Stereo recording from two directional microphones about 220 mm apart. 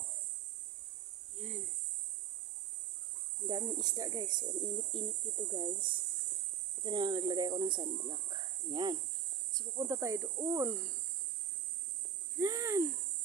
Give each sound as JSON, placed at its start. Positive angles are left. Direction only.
{"t": 3.4, "sound": "speech", "side_deg": -15}
{"t": 12.4, "sound": "speech", "side_deg": -15}